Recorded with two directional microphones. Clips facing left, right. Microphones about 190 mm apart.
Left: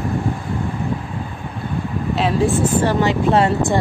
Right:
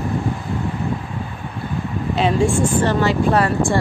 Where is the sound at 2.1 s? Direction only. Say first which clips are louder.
Right 1 dB; centre (ahead or behind); by 3.8 s 20° left (ahead or behind).